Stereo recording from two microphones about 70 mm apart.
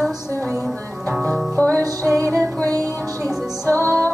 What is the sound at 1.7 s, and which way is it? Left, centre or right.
Music, right.